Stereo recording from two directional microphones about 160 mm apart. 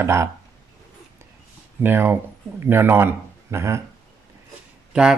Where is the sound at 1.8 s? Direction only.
15° right (ahead or behind).